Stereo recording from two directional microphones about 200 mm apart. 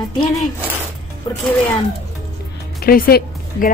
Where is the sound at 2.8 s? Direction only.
50° left (ahead or behind).